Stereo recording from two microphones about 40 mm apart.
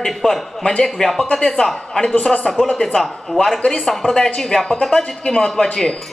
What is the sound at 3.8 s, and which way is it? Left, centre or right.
A woman's voice, centre.